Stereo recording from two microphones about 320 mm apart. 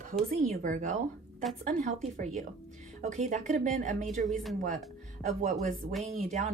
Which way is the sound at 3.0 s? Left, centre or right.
Right.